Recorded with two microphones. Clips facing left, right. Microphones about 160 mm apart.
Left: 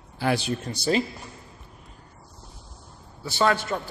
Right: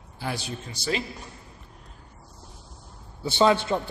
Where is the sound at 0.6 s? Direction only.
40° left (ahead or behind).